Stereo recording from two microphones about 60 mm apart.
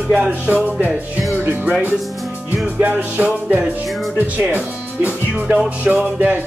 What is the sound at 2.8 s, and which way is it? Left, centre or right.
Music, right.